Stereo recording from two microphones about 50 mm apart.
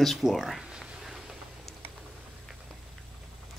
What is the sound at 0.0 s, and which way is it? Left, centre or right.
Speech, centre.